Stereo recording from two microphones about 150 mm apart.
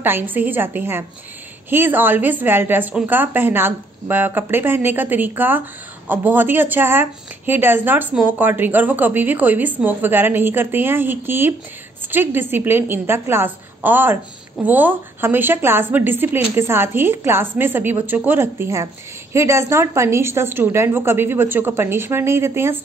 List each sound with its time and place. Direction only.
0.0 s speech: 15° right (ahead or behind)